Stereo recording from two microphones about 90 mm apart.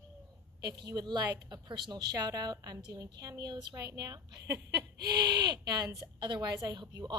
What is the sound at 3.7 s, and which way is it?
A woman's voice, 40° right (ahead or behind).